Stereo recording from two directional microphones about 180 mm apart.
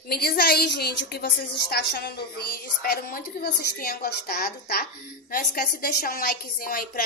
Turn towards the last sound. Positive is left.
turn(degrees=55)  # may be behind; listen again after turning